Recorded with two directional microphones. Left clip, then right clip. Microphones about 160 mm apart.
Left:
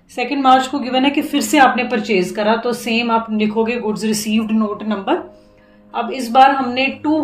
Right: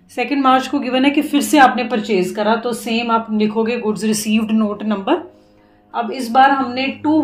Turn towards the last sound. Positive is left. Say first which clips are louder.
# left 1 dB
turn(degrees=-10)  # may be behind; listen again after turning